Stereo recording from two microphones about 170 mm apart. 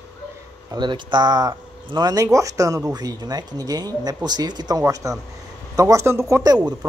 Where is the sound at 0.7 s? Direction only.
25° right (ahead or behind).